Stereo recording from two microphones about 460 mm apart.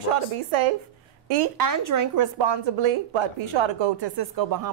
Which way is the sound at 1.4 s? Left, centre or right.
Right.